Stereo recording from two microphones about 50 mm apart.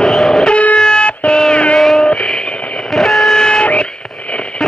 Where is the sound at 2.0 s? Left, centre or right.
Centre.